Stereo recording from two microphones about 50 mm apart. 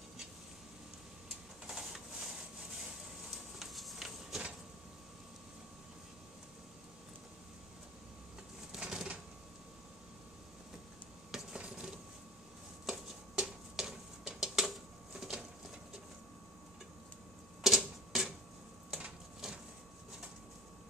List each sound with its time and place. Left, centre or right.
1.7 s printer: centre
8.7 s a sound: centre
11.3 s dishes: centre
12.8 s a sound: centre
17.6 s tick-tock: centre
18.9 s printer: right